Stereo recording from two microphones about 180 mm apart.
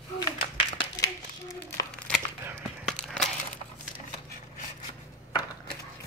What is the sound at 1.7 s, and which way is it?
Crumpling, 10° left (ahead or behind).